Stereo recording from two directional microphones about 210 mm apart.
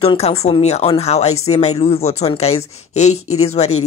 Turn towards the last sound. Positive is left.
turn(degrees=30)  # may be behind; listen again after turning